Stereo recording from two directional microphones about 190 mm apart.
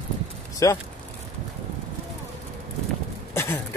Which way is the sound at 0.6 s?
15° left (ahead or behind).